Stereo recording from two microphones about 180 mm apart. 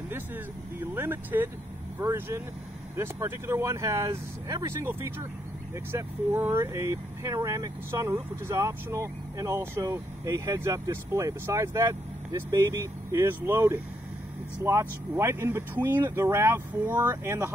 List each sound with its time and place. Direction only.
0.9 s speech: 10° right (ahead or behind)